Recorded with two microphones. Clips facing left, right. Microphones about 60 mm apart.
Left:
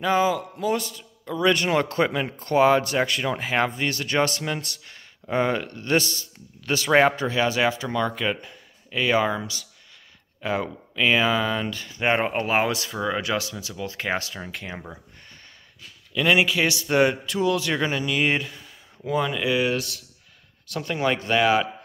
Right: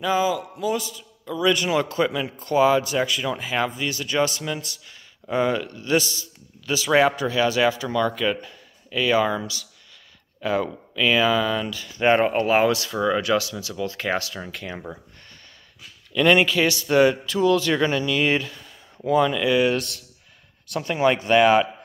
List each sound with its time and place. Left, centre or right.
0.0 s a man's voice: left
5.3 s a man's voice: left
6.9 s speech: left
12.0 s a man's voice: centre
13.2 s speech: left
16.1 s a man's voice: centre
20.7 s speech: centre